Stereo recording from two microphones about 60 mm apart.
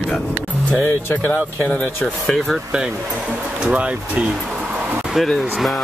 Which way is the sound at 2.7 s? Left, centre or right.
Centre.